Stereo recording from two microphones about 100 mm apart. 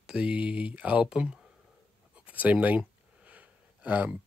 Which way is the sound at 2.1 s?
15° right (ahead or behind).